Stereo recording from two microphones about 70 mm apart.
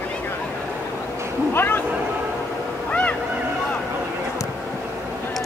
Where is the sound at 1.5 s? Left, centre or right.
Left.